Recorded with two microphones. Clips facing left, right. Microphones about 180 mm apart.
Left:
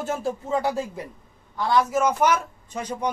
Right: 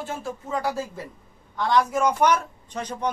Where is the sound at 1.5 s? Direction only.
5° left (ahead or behind).